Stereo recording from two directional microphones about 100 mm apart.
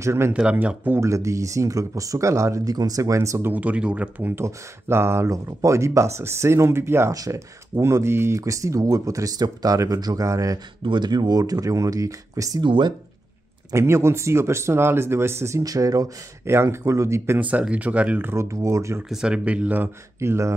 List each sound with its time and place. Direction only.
0.0 s speech: 25° right (ahead or behind)
0.3 s speech: 10° right (ahead or behind)
1.0 s speech: 30° right (ahead or behind)
3.5 s speech: 15° right (ahead or behind)
4.4 s speech: 25° right (ahead or behind)
10.8 s speech: 50° right (ahead or behind); by 12.6 s 35° right (ahead or behind)
12.6 s speech: 55° right (ahead or behind)
13.7 s speech: 30° right (ahead or behind)
17.4 s speech: 15° right (ahead or behind)
18.3 s speech: 30° right (ahead or behind)
19.0 s speech: 10° right (ahead or behind); by 20.5 s 30° right (ahead or behind)